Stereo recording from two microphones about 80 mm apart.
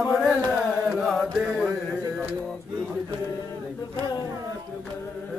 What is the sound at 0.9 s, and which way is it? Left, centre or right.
Mantra, centre.